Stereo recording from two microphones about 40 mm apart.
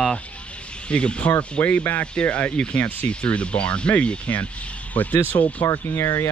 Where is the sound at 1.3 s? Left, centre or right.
Left.